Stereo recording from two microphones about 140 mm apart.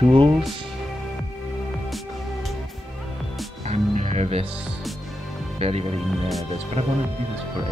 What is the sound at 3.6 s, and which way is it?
Music, 55° right (ahead or behind).